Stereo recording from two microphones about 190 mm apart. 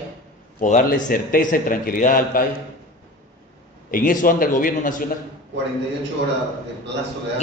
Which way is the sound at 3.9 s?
45° left (ahead or behind).